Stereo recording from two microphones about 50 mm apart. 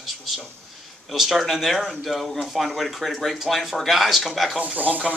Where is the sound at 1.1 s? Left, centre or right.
Centre.